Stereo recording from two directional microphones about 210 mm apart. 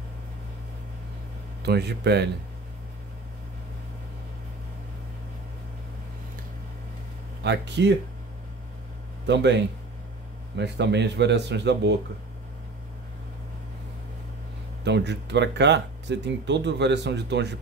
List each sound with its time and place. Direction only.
1.6 s speech: 50° right (ahead or behind)
7.4 s speech: 55° right (ahead or behind)
9.2 s speech: 55° right (ahead or behind)
14.9 s speech: 55° right (ahead or behind)